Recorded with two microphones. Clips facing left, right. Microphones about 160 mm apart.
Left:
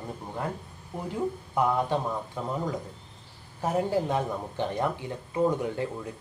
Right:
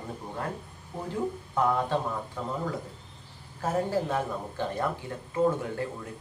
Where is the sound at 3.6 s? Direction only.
15° left (ahead or behind).